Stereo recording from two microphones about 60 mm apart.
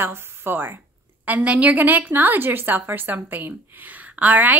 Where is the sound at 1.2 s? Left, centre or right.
Right.